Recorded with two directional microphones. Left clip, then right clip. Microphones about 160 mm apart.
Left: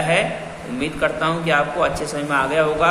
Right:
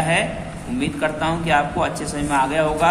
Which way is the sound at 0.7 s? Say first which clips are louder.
Left 1 dB; 25° right (ahead or behind).